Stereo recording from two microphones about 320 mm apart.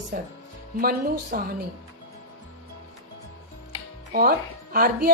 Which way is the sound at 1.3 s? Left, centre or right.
Right.